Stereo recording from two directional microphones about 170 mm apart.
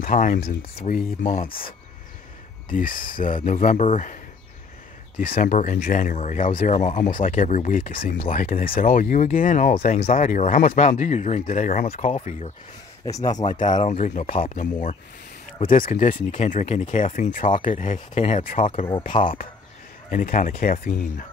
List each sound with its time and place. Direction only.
0.0 s speech: 55° left (ahead or behind)
2.7 s speech: 55° left (ahead or behind)
13.0 s speech: 20° left (ahead or behind)
13.6 s speech: 45° left (ahead or behind)
20.1 s speech: 50° left (ahead or behind)